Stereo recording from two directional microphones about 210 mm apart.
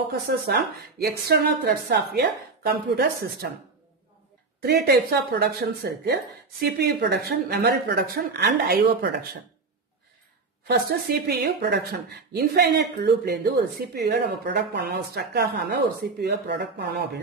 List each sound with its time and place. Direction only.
0.5 s speech: 50° right (ahead or behind)
4.6 s speech: 50° right (ahead or behind)
10.7 s speech: 50° right (ahead or behind)